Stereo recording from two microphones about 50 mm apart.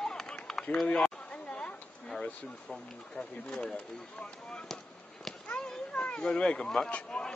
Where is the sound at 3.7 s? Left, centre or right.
Centre.